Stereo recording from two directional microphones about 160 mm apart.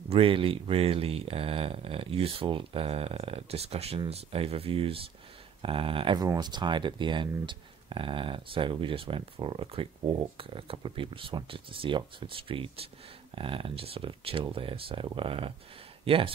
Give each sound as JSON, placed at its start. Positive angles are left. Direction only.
{"t": 0.1, "sound": "speech", "side_deg": -35}